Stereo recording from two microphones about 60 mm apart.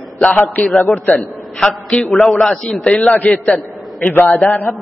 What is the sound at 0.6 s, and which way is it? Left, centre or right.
A man's voice, centre.